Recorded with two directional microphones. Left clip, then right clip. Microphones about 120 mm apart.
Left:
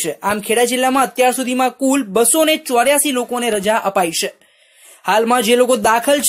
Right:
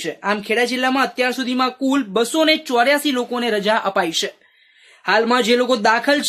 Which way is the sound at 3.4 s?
15° left (ahead or behind).